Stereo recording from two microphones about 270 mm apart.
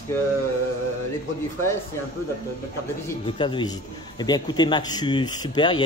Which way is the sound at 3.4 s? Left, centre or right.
Centre.